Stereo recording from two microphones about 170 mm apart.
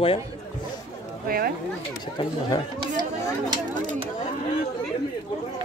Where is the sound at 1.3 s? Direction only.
60° right (ahead or behind).